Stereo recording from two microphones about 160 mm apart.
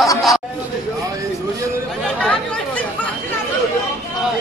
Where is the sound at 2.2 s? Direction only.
10° left (ahead or behind).